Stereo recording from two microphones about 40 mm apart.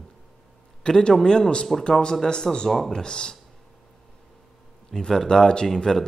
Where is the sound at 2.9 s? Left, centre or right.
Centre.